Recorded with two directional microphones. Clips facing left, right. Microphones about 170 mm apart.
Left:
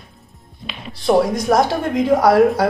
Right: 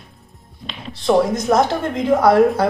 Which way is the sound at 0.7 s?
5° left (ahead or behind).